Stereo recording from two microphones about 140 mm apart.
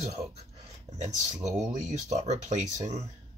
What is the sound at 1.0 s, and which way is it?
Speech, 60° right (ahead or behind).